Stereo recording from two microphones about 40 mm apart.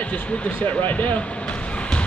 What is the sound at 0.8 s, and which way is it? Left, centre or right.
Speech, left.